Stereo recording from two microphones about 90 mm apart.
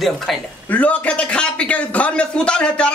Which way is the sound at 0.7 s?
15° left (ahead or behind).